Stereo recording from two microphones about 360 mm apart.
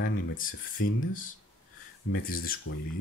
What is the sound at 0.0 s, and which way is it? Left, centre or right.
Speech, left.